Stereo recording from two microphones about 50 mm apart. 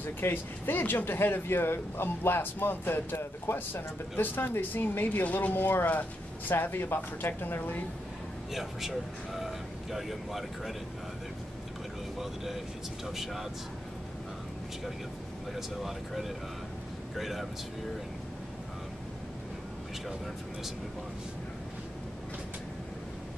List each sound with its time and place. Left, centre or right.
0.0 s speech: left
5.2 s speech: left
5.5 s speech: left
8.5 s speech: centre
13.0 s speech: centre
15.5 s speech: centre